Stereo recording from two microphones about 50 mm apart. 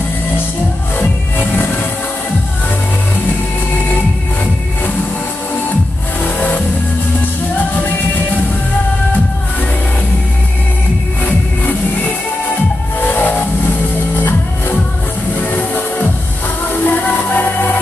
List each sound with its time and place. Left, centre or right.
13.0 s vehicle: left
14.1 s music: left